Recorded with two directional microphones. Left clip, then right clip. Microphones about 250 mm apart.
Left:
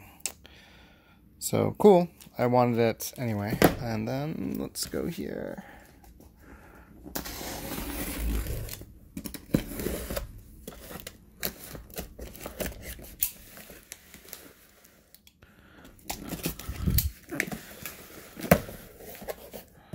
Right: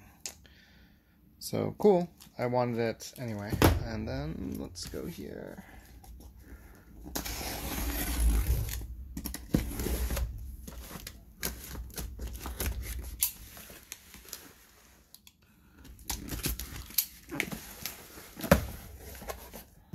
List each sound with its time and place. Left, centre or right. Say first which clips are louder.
0.2 s sigh: left 5 dB; left
1.5 s speech: left 6 dB; left
7.1 s a sound: left 1 dB; centre
16.1 s dog: left 2 dB; centre